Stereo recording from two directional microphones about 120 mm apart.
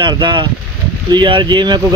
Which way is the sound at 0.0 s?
40° right (ahead or behind).